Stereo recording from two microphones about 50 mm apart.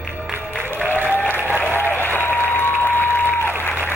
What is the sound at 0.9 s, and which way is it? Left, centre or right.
Applause, left.